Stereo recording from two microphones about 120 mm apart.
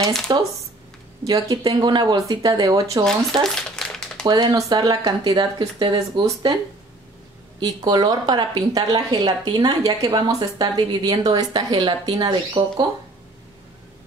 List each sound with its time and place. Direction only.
0.3 s a woman's voice: 40° right (ahead or behind)
3.4 s crumpling: 5° left (ahead or behind)
4.3 s a woman's voice: 35° right (ahead or behind)
7.6 s a woman's voice: 35° right (ahead or behind)